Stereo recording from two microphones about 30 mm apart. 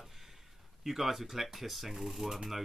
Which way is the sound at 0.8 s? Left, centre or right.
Centre.